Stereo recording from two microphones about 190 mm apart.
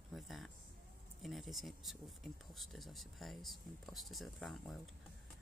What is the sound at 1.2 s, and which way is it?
Speech, centre (ahead or behind).